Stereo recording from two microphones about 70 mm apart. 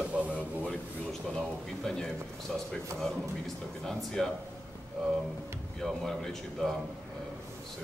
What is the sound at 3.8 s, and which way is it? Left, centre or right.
Speech, centre.